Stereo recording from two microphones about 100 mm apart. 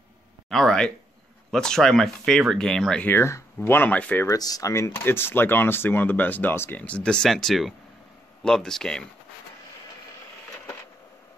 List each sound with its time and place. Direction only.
0.5 s speech: 5° left (ahead or behind)
3.1 s speech: 25° left (ahead or behind)
4.3 s speech: 35° left (ahead or behind)
4.9 s speech: 20° left (ahead or behind); by 9.0 s 5° left (ahead or behind)